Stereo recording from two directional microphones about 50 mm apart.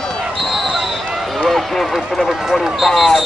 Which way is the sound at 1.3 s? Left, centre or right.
Centre.